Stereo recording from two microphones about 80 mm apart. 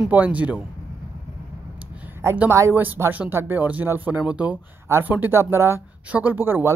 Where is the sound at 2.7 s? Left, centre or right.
Right.